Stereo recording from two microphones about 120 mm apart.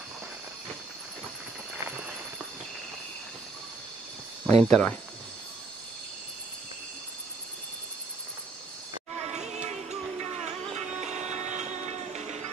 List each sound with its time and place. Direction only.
4.5 s speech: 5° left (ahead or behind)
9.2 s music: 65° right (ahead or behind)